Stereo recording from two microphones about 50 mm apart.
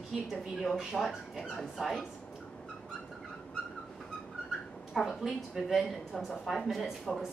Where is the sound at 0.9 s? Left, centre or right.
Centre.